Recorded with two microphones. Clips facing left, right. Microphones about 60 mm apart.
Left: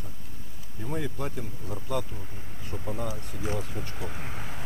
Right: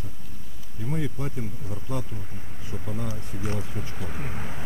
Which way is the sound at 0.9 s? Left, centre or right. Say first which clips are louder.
Right 2 dB; left.